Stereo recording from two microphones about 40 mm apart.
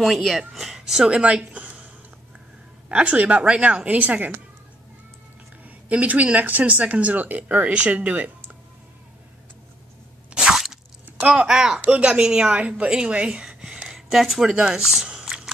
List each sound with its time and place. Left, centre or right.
0.0 s speech: centre
1.0 s a woman's voice: right
2.9 s speech: right
3.8 s speech: right
5.6 s speech: right
10.5 s crunch: centre
11.4 s speech: centre
13.9 s speech: centre
15.0 s a sound: centre